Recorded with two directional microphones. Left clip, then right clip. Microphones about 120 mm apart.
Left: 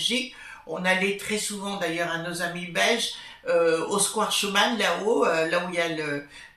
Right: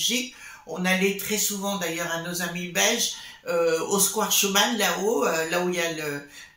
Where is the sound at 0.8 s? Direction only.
20° right (ahead or behind).